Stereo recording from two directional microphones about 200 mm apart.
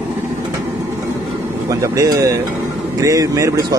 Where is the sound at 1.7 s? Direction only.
15° right (ahead or behind).